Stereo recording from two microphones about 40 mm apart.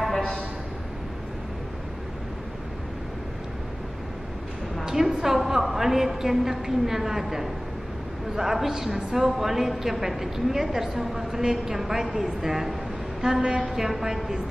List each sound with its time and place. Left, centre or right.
4.8 s a woman's voice: centre
13.2 s a woman's voice: centre